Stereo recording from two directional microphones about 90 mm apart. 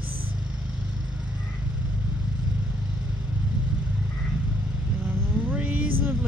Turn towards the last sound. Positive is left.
turn(degrees=-20)  # may be behind; listen again after turning